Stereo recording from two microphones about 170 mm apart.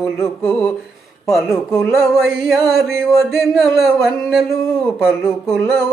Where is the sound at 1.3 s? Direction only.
Centre (ahead or behind).